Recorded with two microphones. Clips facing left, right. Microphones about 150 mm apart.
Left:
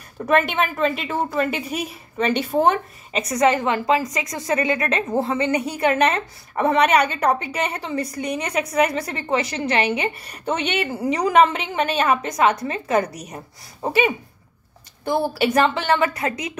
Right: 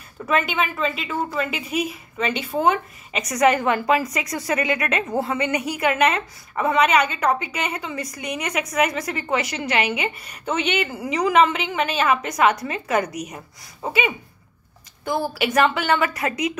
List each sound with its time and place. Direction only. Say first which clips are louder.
0.2 s a woman's voice: left 3 dB; 40° left (ahead or behind)
12.3 s speech: even; 25° left (ahead or behind)
15.0 s a woman's voice: left 3 dB; 30° left (ahead or behind)